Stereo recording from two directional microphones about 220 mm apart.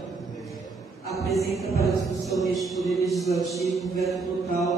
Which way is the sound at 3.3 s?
15° left (ahead or behind).